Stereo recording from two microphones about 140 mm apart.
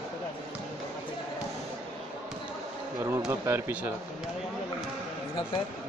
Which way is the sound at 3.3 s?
15° right (ahead or behind).